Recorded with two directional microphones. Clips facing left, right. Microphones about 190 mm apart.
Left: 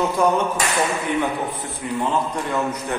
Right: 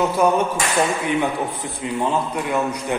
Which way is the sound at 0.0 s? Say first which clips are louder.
Right 1 dB; 10° right (ahead or behind).